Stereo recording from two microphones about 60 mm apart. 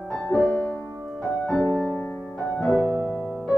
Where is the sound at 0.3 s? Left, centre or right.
Left.